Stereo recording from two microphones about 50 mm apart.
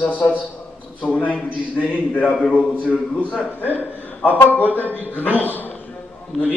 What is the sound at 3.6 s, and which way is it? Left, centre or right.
A man's voice, left.